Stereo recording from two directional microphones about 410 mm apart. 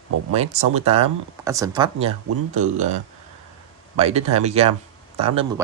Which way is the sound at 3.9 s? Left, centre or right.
Centre.